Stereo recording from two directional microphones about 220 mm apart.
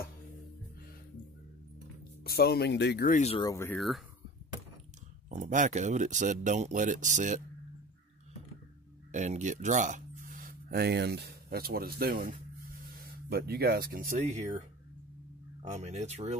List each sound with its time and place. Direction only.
2.2 s speech: 45° left (ahead or behind); by 3.4 s 30° left (ahead or behind)
3.4 s speech: 10° left (ahead or behind)
5.3 s speech: 35° right (ahead or behind)
9.1 s speech: 35° right (ahead or behind)
15.6 s speech: 30° right (ahead or behind)